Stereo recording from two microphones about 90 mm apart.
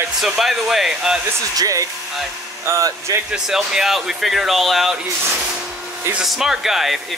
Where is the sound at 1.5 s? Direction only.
40° right (ahead or behind).